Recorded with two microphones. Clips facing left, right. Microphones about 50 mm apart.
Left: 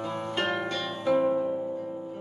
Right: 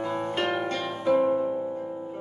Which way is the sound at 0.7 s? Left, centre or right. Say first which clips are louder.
Right 2 dB; right.